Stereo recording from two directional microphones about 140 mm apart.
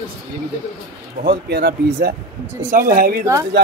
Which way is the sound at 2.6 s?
90° right.